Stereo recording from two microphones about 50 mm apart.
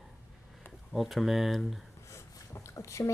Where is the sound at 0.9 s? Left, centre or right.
Centre.